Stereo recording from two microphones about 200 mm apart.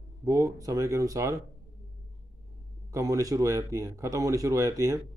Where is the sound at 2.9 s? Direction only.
15° right (ahead or behind).